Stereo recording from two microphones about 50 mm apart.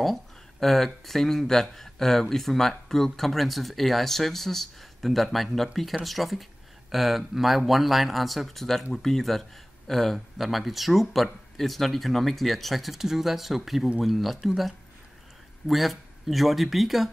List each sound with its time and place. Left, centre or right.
0.0 s speech: centre
15.7 s speech: centre